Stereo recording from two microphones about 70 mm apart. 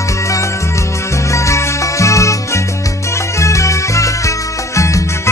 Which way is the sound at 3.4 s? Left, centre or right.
Left.